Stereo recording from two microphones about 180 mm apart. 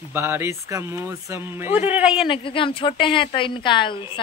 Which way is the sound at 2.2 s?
30° left (ahead or behind).